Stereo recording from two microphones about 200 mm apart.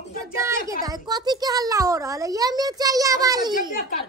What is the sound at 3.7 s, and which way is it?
Speech, 45° left (ahead or behind).